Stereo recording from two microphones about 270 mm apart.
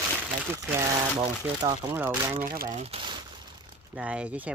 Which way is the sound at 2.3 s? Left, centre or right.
Right.